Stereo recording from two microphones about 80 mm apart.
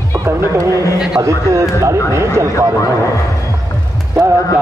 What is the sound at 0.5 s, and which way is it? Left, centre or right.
A man's voice, right.